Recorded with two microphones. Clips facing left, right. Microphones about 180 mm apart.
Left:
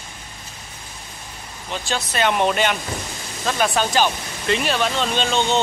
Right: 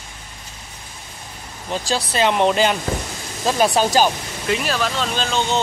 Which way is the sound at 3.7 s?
40° right (ahead or behind).